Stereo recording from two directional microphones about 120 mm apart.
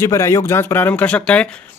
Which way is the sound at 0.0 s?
25° left (ahead or behind).